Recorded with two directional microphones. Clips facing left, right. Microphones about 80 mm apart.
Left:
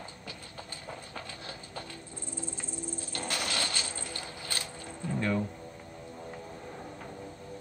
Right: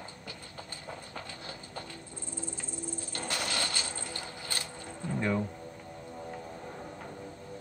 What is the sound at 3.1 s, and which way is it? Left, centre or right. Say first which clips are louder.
Mechanisms: even; right.